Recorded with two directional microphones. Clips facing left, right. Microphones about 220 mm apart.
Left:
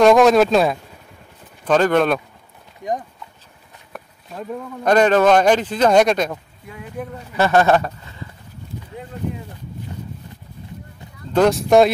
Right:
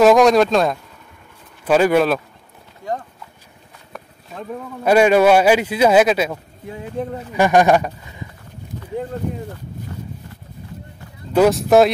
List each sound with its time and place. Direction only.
0.0 s speech: centre (ahead or behind)
1.6 s speech: 10° right (ahead or behind)
2.8 s speech: 15° left (ahead or behind)
3.9 s speech: centre (ahead or behind)
7.0 s speech: 25° right (ahead or behind)
7.3 s speech: 15° right (ahead or behind)
11.3 s speech: 5° right (ahead or behind)